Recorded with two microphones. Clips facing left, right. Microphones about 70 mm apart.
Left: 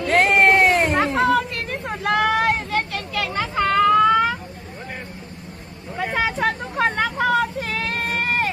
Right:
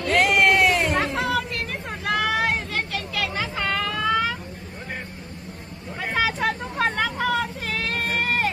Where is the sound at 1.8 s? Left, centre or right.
Left.